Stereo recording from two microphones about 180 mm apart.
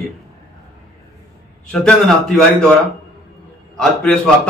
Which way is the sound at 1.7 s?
5° left (ahead or behind).